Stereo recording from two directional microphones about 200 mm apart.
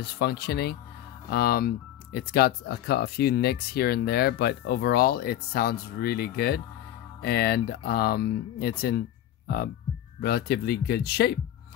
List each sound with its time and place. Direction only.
0.0 s speech: 55° left (ahead or behind)
10.2 s speech: 50° left (ahead or behind)